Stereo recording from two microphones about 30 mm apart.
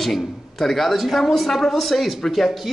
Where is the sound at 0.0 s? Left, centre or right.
Centre.